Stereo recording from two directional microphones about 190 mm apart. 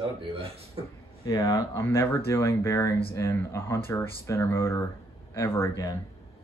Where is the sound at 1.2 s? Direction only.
20° left (ahead or behind).